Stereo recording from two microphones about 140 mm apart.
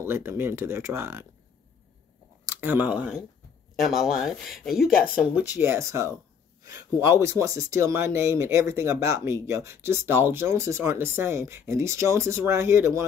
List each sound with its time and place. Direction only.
0.0 s speech: 20° right (ahead or behind)
2.4 s speech: 15° right (ahead or behind); by 4.9 s centre (ahead or behind)
5.2 s speech: 10° right (ahead or behind)